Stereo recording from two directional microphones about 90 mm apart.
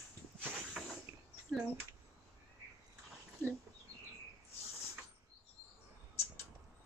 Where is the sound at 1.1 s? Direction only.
35° right (ahead or behind).